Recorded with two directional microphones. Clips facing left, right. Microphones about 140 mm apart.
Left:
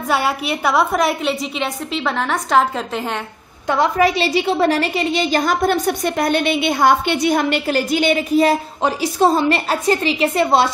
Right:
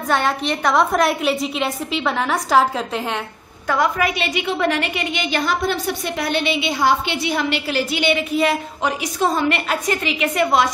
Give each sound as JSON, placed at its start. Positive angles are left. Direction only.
{"t": 0.1, "sound": "a woman's voice", "side_deg": 5}
{"t": 3.6, "sound": "a woman's voice", "side_deg": 25}